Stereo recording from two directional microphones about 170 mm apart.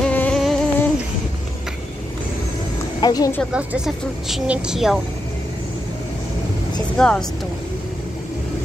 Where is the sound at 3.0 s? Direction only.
20° left (ahead or behind).